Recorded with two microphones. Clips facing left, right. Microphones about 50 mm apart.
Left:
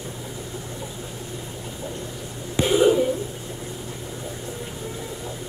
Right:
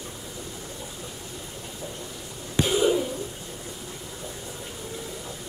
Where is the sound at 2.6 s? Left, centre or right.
Centre.